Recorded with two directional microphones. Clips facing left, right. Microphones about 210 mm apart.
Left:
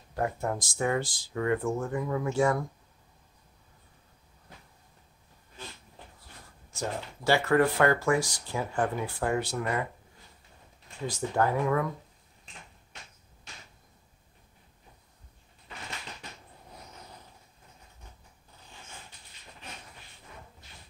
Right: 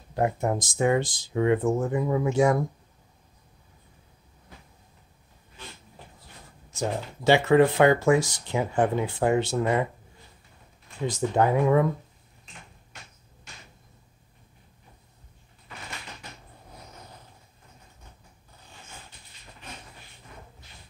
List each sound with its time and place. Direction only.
0.1 s speech: 20° right (ahead or behind)
6.7 s speech: 20° right (ahead or behind)
11.1 s speech: 20° right (ahead or behind)